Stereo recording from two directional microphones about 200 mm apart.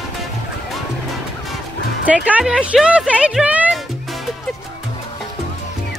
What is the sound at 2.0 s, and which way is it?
A woman's voice, 5° right (ahead or behind).